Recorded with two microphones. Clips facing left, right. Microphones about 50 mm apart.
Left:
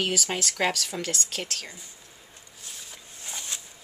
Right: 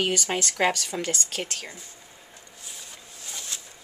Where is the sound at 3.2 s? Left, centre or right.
Centre.